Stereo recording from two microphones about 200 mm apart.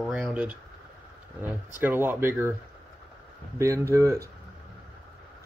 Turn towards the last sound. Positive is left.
turn(degrees=-15)  # may be behind; listen again after turning